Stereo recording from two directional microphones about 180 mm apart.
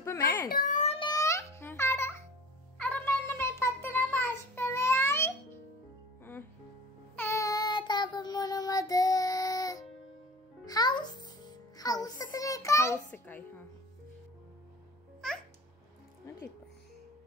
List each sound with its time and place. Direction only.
0.0 s a sound: 15° left (ahead or behind)
0.5 s a sound: 50° left (ahead or behind)
0.9 s music: 20° left (ahead or behind)
2.8 s child singing: 10° left (ahead or behind)
7.2 s child singing: 15° left (ahead or behind)
10.6 s music: 20° left (ahead or behind)
15.2 s babbling: 5° left (ahead or behind)